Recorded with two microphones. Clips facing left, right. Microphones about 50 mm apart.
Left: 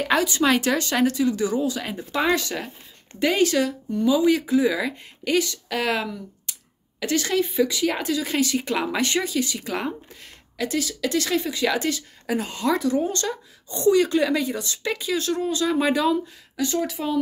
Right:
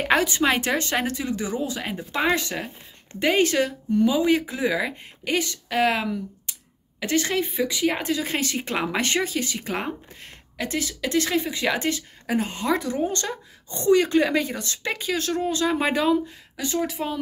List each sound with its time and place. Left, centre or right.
0.0 s speech: right
0.4 s speech: right